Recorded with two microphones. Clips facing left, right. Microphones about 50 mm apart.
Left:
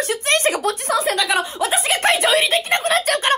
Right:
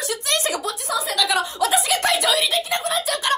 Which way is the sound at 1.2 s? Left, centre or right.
Left.